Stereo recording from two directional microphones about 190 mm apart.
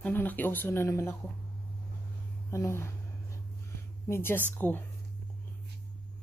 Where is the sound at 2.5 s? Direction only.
15° left (ahead or behind).